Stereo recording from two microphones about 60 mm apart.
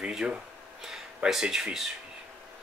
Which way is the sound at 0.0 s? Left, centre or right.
Centre.